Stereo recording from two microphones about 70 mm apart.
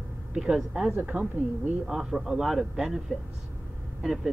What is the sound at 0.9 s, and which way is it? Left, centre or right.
Speech, right.